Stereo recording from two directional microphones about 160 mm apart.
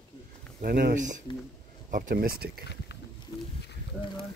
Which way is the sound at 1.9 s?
60° right (ahead or behind).